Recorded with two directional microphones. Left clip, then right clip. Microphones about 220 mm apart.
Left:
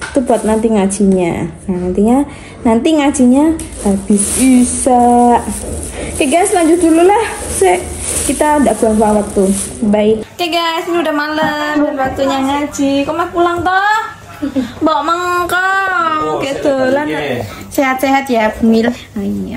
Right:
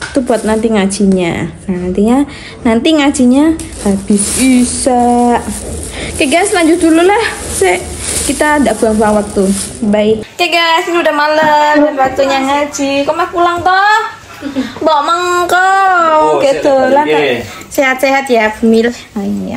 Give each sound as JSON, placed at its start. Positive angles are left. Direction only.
{"t": 0.1, "sound": "a woman's voice", "side_deg": -5}
{"t": 10.4, "sound": "a woman's voice", "side_deg": 10}
{"t": 17.7, "sound": "speech", "side_deg": 25}